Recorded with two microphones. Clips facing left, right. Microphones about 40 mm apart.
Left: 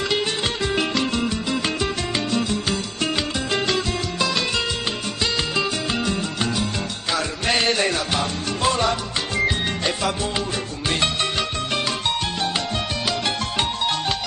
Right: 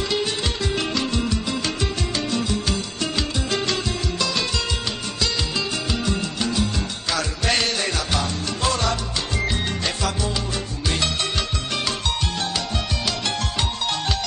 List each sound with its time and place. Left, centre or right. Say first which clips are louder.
3.2 s music: right 1 dB; centre
5.2 s music: left 2 dB; left
7.1 s music: left 1 dB; centre
7.7 s music: left 3 dB; left